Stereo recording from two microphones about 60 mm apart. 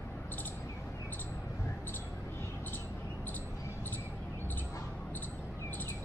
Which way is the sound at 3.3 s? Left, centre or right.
Left.